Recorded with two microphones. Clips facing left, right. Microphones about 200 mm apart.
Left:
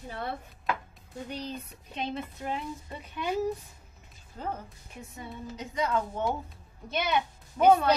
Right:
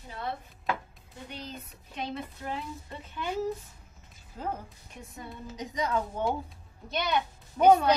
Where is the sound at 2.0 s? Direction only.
20° left (ahead or behind).